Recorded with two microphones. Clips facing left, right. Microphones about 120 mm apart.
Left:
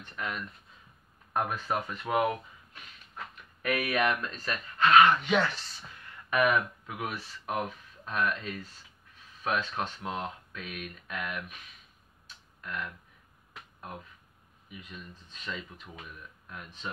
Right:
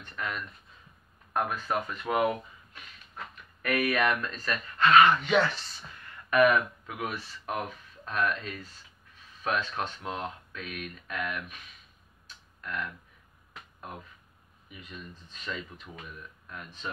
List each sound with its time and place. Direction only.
0.0 s speech: 15° left (ahead or behind)
1.7 s speech: 5° left (ahead or behind)
3.6 s speech: 15° left (ahead or behind)
15.4 s speech: 5° left (ahead or behind)